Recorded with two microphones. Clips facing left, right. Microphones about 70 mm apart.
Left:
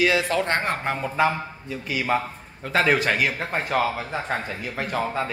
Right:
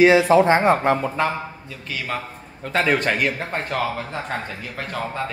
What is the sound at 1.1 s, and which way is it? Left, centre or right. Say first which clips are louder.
A man's voice: left 1 dB; centre.